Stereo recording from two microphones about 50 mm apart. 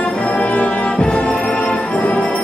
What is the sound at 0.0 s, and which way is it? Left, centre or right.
Music, left.